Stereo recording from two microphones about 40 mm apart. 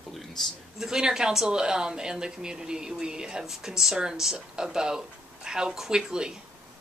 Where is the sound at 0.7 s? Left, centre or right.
Centre.